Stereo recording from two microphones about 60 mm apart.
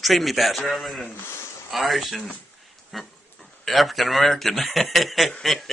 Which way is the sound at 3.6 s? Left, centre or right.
Centre.